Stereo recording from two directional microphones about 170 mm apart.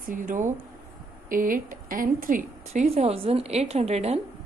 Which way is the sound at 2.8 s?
40° right (ahead or behind).